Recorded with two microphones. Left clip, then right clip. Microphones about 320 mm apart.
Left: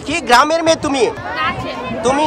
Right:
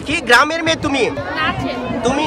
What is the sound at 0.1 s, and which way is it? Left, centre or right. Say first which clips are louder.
Speech: left 1 dB; centre.